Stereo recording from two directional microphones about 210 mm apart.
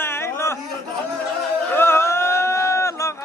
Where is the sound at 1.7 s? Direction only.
10° left (ahead or behind).